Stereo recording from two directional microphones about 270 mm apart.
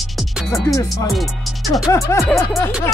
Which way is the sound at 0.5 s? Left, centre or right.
Centre.